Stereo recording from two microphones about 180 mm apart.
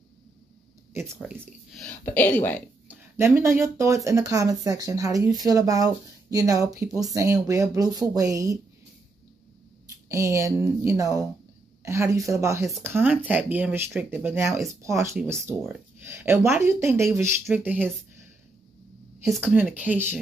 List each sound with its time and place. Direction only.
1.4 s speech: 5° left (ahead or behind)
2.9 s speech: 15° right (ahead or behind)
10.0 s speech: 15° right (ahead or behind)
19.5 s speech: 10° right (ahead or behind)